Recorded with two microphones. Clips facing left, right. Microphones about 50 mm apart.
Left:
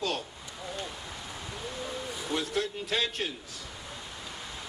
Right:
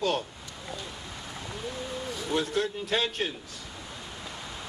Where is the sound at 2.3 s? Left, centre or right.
Right.